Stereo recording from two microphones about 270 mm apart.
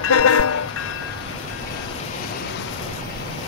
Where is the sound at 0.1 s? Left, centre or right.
Left.